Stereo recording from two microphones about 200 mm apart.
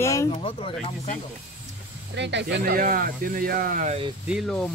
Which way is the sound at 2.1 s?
60° right (ahead or behind).